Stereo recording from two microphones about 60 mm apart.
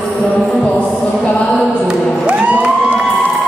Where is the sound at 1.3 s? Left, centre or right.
Centre.